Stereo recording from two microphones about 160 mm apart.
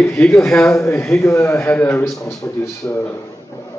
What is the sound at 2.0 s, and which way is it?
Speech, centre (ahead or behind).